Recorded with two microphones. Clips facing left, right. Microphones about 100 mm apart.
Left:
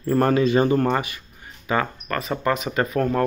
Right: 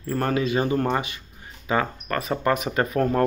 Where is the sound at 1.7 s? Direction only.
25° right (ahead or behind).